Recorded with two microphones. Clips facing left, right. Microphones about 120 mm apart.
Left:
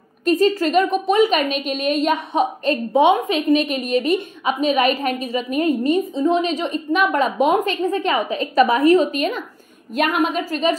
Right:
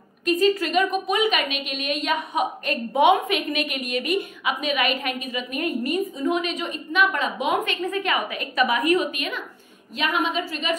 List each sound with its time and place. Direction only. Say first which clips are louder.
0.2 s a woman's voice: left 4 dB; 35° left (ahead or behind)
9.9 s a woman's voice: left 5 dB; 50° left (ahead or behind)
10.5 s a woman's voice: left 7 dB; 35° left (ahead or behind)